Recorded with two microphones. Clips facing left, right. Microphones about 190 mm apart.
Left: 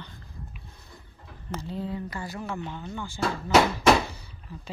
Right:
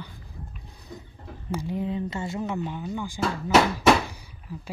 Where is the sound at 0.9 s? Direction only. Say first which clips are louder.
Right 12 dB; 20° right (ahead or behind).